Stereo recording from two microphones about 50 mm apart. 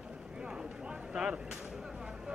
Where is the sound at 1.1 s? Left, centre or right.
Centre.